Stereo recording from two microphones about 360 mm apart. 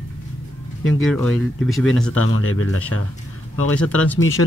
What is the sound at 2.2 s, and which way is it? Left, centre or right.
Speech, left.